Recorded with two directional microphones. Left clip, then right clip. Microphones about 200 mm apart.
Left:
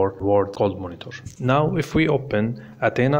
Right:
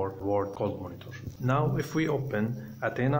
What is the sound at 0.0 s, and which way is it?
Speech, 35° left (ahead or behind).